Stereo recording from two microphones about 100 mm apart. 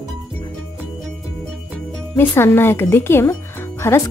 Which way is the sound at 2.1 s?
25° left (ahead or behind).